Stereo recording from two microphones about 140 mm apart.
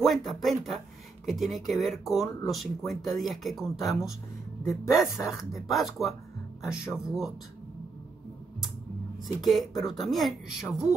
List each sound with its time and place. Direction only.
0.0 s speech: centre (ahead or behind)
9.4 s speech: centre (ahead or behind)